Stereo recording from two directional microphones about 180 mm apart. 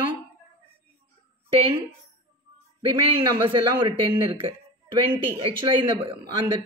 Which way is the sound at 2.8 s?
30° right (ahead or behind).